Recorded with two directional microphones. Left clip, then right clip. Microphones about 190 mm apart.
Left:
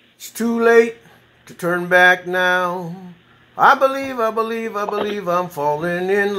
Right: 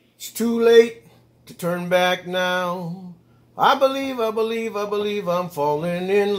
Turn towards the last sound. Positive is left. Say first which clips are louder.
# left 2 dB
turn(degrees=-5)  # may be behind; listen again after turning